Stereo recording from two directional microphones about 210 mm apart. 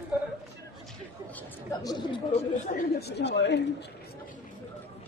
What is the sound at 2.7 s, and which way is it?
Chatter, 50° left (ahead or behind).